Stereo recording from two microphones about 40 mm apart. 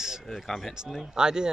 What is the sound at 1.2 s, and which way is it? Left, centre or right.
Speech, centre.